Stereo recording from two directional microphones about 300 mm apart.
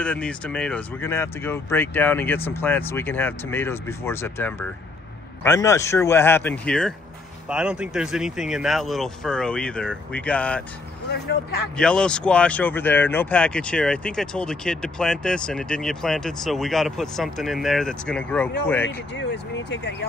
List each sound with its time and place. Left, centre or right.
0.0 s speech: centre
11.7 s speech: centre
19.1 s speech: left